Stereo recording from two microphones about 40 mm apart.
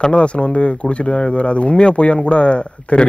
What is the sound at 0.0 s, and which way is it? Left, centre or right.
Speech, left.